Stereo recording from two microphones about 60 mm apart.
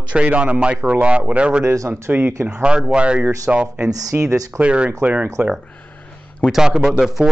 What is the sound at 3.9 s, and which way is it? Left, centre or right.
Speech, right.